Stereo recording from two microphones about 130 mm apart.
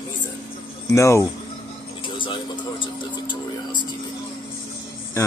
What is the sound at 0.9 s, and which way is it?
Speech, 25° left (ahead or behind).